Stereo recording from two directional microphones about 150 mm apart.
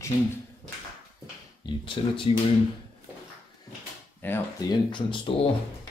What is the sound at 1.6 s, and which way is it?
Speech, 35° left (ahead or behind).